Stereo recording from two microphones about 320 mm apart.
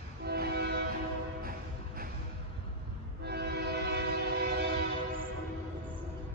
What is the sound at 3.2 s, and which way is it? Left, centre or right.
Train, right.